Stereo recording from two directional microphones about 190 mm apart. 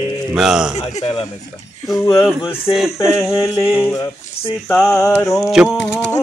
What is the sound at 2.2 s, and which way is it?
Speech, centre (ahead or behind).